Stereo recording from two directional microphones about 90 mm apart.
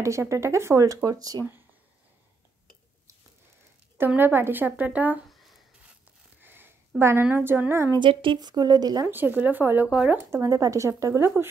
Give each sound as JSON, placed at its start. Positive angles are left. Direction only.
{"t": 0.0, "sound": "speech", "side_deg": -35}
{"t": 4.2, "sound": "speech", "side_deg": -25}
{"t": 5.3, "sound": "writing", "side_deg": 0}
{"t": 6.4, "sound": "a sound", "side_deg": -25}
{"t": 7.0, "sound": "speech", "side_deg": -30}
{"t": 8.0, "sound": "speech", "side_deg": -70}
{"t": 8.4, "sound": "a woman's voice", "side_deg": -50}
{"t": 9.0, "sound": "speech", "side_deg": -20}
{"t": 10.3, "sound": "speech", "side_deg": -40}